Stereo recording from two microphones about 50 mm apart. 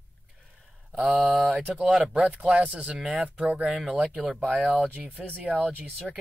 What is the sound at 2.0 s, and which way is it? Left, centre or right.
Speech, centre.